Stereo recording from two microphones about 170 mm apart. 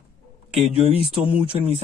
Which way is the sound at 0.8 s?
35° left (ahead or behind).